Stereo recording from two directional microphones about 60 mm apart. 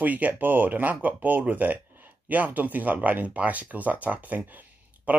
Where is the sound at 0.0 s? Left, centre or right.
Right.